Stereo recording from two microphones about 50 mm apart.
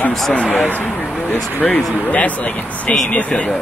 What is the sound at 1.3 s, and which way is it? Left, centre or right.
Speech, left.